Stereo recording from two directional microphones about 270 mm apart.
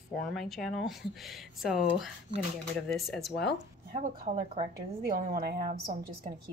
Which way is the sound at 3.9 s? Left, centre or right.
Right.